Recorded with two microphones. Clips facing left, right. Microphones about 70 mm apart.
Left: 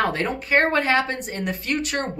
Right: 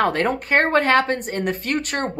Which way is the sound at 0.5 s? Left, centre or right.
Right.